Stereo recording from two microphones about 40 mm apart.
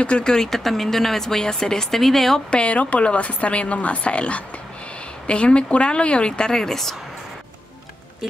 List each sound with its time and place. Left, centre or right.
0.0 s speech: left; by 2.4 s centre
2.5 s speech: left; by 7.0 s centre